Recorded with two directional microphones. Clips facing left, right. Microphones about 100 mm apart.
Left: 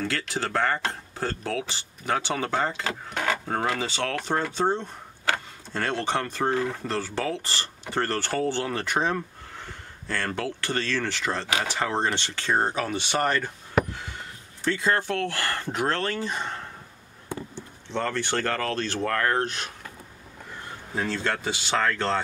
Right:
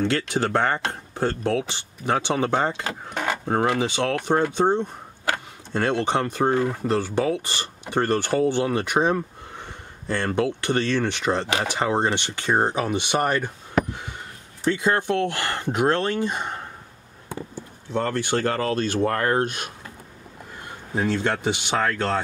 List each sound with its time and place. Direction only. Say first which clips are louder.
0.0 s speech: right 6 dB; 20° right (ahead or behind)
14.6 s speech: right 3 dB; 15° right (ahead or behind)
17.8 s speech: right 3 dB; 10° right (ahead or behind)
19.0 s speech: even; 30° right (ahead or behind)
19.3 s speech: right 4 dB; 15° right (ahead or behind)
20.9 s speech: right 4 dB; 20° right (ahead or behind)